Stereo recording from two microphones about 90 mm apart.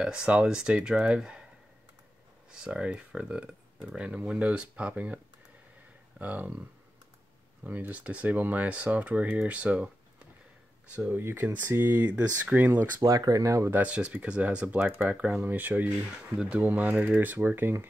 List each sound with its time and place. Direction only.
0.0 s speech: 10° right (ahead or behind)
2.5 s speech: 10° right (ahead or behind)
7.6 s speech: 20° right (ahead or behind)
13.2 s speech: 40° right (ahead or behind)
13.7 s speech: 15° right (ahead or behind)